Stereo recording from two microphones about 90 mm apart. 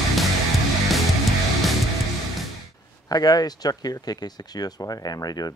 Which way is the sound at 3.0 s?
45° left (ahead or behind).